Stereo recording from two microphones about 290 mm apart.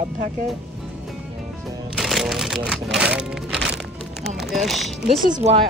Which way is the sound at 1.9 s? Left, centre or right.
Centre.